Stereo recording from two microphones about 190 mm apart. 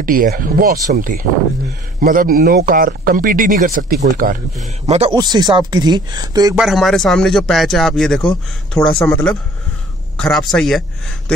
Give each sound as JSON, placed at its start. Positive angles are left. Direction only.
{"t": 0.0, "sound": "speech", "side_deg": -45}
{"t": 4.8, "sound": "speech", "side_deg": -35}
{"t": 5.1, "sound": "speech", "side_deg": -20}
{"t": 6.5, "sound": "speech", "side_deg": 0}